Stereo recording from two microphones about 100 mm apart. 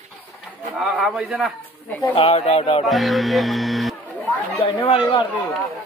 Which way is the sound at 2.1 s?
80° left.